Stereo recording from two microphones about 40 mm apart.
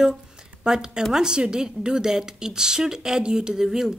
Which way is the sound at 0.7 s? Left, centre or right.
Centre.